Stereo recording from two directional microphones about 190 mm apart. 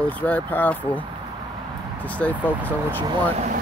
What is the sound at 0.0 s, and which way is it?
Speech, 10° left (ahead or behind).